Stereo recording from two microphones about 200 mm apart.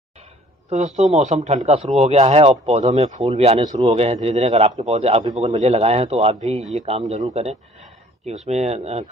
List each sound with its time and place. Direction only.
0.7 s a man's voice: 35° right (ahead or behind)